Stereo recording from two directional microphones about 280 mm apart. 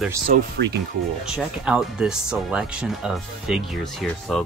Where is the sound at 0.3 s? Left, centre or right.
Right.